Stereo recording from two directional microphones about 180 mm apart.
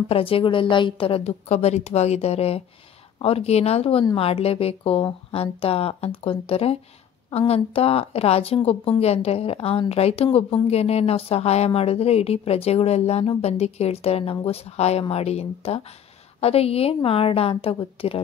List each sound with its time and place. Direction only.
0.1 s a woman's voice: 30° left (ahead or behind)